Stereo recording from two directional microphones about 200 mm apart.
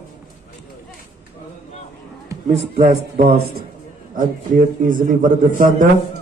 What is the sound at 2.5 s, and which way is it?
A man's voice, 30° right (ahead or behind).